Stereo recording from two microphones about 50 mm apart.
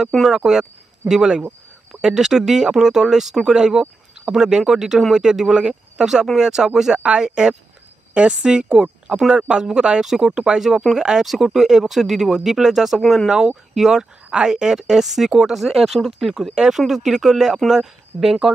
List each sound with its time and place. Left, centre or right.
0.3 s a woman's voice: centre
11.2 s speech: centre